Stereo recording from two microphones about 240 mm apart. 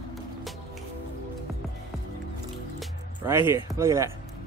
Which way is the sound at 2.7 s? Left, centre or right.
Centre.